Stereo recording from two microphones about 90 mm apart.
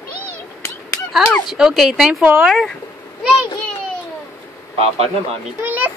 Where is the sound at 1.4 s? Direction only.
Centre (ahead or behind).